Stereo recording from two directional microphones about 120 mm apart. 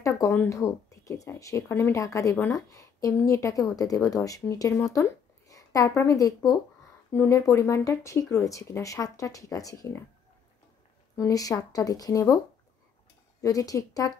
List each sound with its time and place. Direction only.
0.0 s a woman's voice: 25° left (ahead or behind)
11.1 s speech: 30° left (ahead or behind)
13.4 s speech: 30° left (ahead or behind)